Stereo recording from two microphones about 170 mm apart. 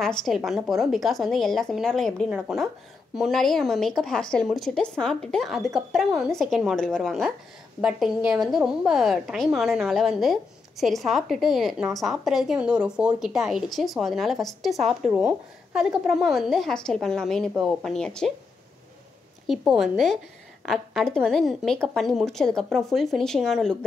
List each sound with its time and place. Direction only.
0.2 s a woman's voice: centre (ahead or behind)
19.4 s a woman's voice: centre (ahead or behind)